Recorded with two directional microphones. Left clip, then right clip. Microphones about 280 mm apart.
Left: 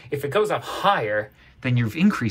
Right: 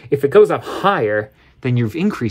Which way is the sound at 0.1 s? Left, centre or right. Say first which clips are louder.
Right 10 dB; right.